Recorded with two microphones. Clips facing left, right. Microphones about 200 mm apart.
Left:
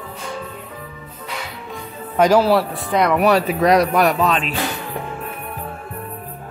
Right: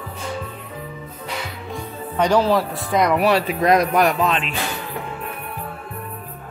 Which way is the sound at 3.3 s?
40° left (ahead or behind).